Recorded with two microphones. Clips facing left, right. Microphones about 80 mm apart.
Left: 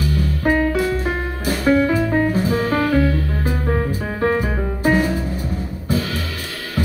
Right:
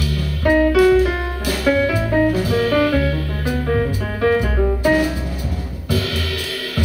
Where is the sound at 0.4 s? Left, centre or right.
Right.